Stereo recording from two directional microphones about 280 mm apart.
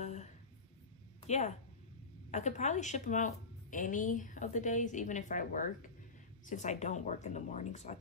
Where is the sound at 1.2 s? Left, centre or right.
Left.